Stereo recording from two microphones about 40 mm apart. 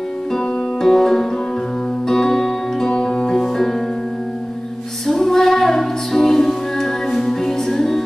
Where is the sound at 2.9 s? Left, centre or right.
Left.